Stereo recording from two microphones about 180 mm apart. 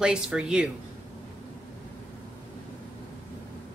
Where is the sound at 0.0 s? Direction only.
5° right (ahead or behind).